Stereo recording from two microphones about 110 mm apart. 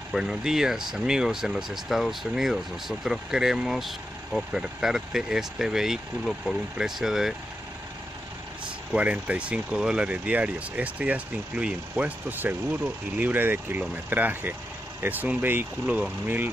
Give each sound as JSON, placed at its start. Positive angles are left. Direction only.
{"t": 0.1, "sound": "speech", "side_deg": -5}
{"t": 8.9, "sound": "speech", "side_deg": -10}